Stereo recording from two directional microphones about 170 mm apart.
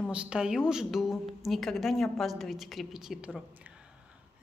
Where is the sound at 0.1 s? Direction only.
5° right (ahead or behind).